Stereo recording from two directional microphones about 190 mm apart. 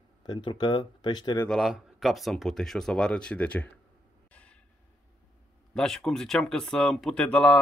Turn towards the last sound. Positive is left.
turn(degrees=5)  # may be behind; listen again after turning